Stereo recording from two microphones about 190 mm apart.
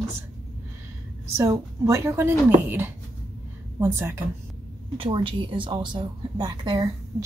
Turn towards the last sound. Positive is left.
turn(degrees=-25)  # may be behind; listen again after turning